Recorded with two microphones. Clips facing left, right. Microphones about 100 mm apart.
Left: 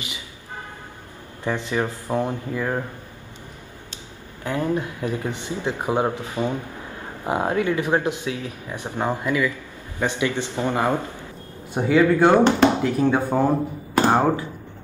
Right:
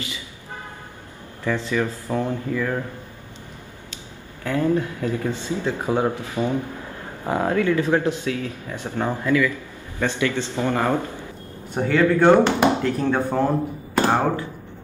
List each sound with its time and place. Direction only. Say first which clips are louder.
1.4 s speech: right 1 dB; 20° left (ahead or behind)
4.5 s speech: right 3 dB; 20° left (ahead or behind)